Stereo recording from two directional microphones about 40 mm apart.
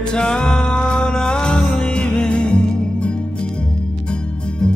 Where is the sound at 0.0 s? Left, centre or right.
Left.